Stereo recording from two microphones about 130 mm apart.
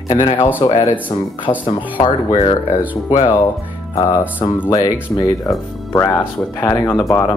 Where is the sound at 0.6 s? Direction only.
40° left (ahead or behind).